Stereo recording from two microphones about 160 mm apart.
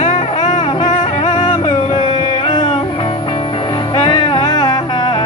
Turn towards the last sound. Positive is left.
turn(degrees=30)  # may be behind; listen again after turning